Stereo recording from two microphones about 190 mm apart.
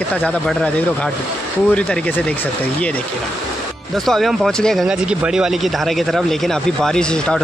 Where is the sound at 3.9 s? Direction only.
Centre (ahead or behind).